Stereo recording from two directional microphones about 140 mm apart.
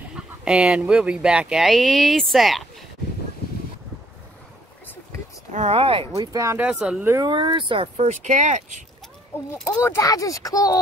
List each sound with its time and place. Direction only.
0.1 s speech: 5° right (ahead or behind)
5.5 s speech: 50° right (ahead or behind)
6.1 s speech: 25° right (ahead or behind)
6.6 s speech: 5° right (ahead or behind)
7.1 s speech: 25° right (ahead or behind)
8.1 s speech: 60° right (ahead or behind)
9.8 s speech: 20° left (ahead or behind)